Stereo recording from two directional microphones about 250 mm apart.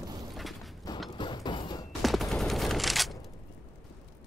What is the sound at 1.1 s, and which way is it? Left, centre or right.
Mechanisms, centre.